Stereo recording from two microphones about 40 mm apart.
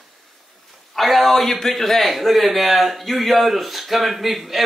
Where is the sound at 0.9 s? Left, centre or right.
Centre.